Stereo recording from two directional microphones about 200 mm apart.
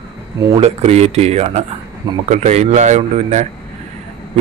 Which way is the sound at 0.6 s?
30° right (ahead or behind).